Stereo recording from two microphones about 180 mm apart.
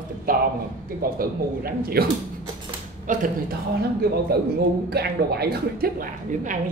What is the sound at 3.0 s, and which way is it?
Speech, 45° right (ahead or behind).